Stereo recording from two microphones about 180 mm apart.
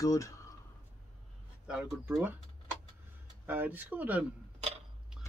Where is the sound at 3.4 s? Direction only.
10° right (ahead or behind).